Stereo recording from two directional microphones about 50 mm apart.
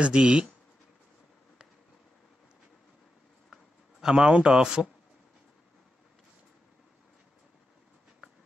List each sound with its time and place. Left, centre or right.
0.0 s speech: centre
4.0 s speech: centre